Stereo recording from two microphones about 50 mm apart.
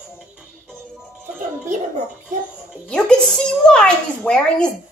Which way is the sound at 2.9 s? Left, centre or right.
Centre.